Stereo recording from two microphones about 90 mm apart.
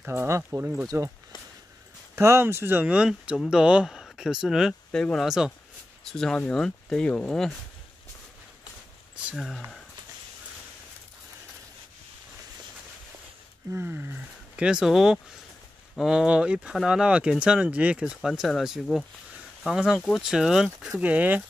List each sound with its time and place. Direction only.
0.0 s speech: 25° right (ahead or behind)
2.1 s speech: 30° right (ahead or behind)
2.9 s speech: 10° right (ahead or behind)
4.9 s speech: 5° left (ahead or behind)
9.3 s speech: centre (ahead or behind)
13.7 s speech: 25° right (ahead or behind)
14.6 s speech: 10° right (ahead or behind)
21.0 s speech: 15° right (ahead or behind)